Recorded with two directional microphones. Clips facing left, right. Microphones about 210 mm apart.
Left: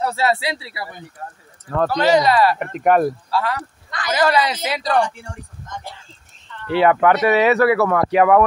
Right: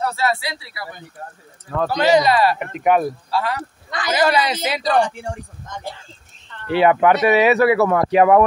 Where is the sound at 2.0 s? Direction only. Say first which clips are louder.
Even; 15° right (ahead or behind).